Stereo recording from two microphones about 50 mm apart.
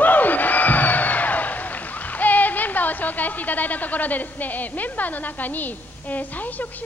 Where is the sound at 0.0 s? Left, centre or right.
Left.